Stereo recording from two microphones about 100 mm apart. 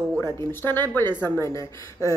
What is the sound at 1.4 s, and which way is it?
Speech, 30° left (ahead or behind).